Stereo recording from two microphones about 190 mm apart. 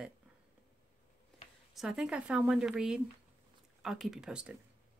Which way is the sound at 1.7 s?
Centre (ahead or behind).